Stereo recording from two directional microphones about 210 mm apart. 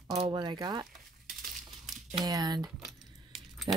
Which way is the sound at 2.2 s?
15° right (ahead or behind).